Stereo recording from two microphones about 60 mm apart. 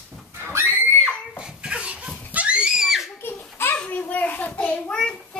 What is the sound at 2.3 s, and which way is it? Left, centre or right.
Screaming, right.